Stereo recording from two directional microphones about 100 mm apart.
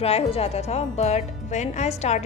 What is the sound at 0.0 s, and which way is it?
A woman's voice, 85° left.